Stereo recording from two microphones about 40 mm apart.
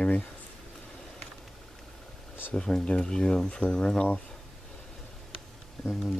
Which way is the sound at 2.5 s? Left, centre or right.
Left.